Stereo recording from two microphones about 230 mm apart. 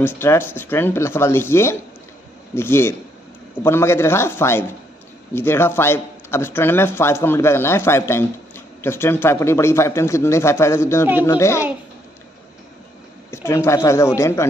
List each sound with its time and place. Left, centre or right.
0.0 s speech: centre
13.3 s speech: centre